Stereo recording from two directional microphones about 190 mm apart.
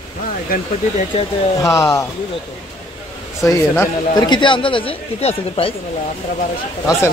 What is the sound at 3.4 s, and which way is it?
A man's voice, 15° left (ahead or behind).